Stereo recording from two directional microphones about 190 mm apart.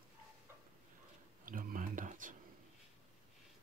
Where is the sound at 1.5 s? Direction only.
45° right (ahead or behind).